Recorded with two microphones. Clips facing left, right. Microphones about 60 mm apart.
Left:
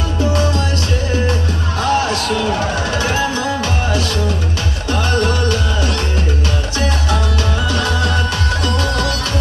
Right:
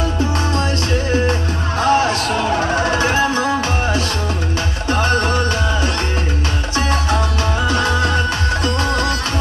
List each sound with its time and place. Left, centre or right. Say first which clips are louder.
1.8 s music: right 2 dB; right
7.7 s music: right 1 dB; right